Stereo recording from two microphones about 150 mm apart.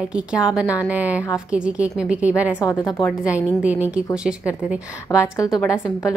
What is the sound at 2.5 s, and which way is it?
Speech, 20° left (ahead or behind).